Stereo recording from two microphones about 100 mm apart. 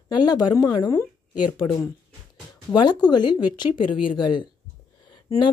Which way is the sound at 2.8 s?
45° left (ahead or behind).